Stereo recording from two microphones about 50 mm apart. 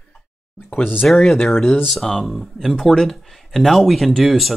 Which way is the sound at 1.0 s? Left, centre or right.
Centre.